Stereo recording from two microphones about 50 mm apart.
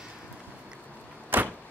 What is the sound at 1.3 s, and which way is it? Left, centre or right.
Vehicle, right.